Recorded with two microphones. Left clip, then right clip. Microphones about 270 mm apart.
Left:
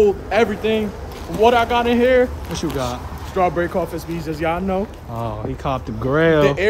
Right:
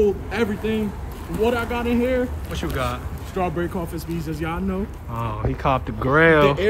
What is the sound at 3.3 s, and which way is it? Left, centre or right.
Speech, centre.